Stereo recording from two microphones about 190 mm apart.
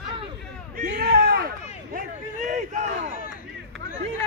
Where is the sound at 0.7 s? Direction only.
50° right (ahead or behind).